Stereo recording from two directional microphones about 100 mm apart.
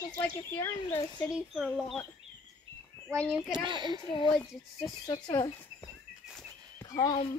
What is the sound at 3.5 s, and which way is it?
Speech, 50° right (ahead or behind).